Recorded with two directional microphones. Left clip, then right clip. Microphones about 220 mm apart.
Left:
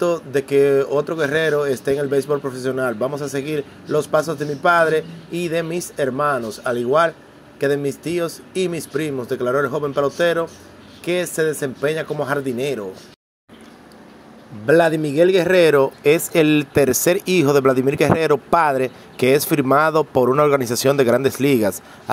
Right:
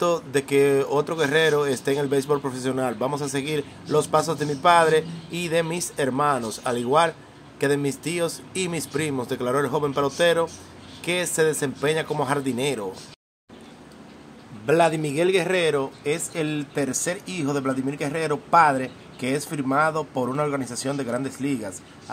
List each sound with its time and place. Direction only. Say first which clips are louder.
0.0 s speech: left 3 dB; 5° left (ahead or behind)
14.7 s speech: left 5 dB; 15° left (ahead or behind); by 22.1 s 35° left (ahead or behind)